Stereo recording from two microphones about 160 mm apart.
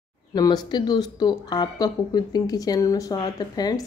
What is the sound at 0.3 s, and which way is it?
Speech, 25° left (ahead or behind).